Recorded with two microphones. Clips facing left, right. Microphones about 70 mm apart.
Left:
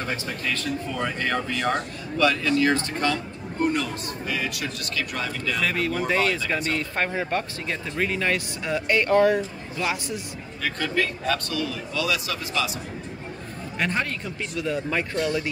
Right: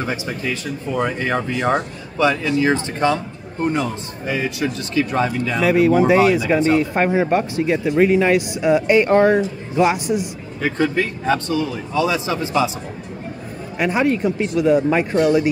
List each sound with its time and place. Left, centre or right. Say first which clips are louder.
0.0 s a man's voice: right 5 dB; centre
9.1 s speech: right 3 dB; right
9.8 s a man's voice: right 11 dB; centre
13.7 s a man's voice: right 9 dB; centre